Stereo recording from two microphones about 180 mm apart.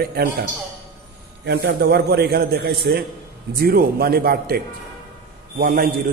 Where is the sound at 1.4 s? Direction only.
65° right (ahead or behind).